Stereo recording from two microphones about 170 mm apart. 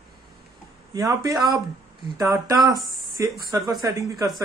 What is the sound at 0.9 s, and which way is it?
Speech, 20° right (ahead or behind).